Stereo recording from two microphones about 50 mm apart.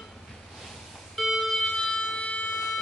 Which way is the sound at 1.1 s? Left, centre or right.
Centre.